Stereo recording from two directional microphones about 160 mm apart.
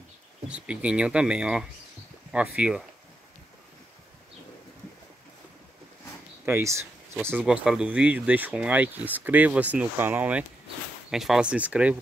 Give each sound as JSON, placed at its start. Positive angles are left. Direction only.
{"t": 0.5, "sound": "speech", "side_deg": -5}
{"t": 6.4, "sound": "speech", "side_deg": -15}